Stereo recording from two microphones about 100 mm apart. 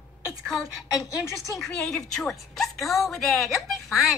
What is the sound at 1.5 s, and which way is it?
A woman's voice, 5° left (ahead or behind).